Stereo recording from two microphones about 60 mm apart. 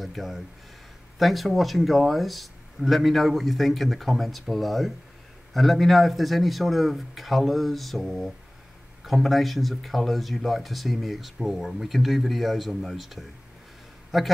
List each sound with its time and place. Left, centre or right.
0.0 s speech: centre